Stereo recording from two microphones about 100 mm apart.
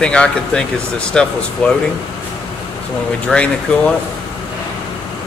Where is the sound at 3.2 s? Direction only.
10° left (ahead or behind).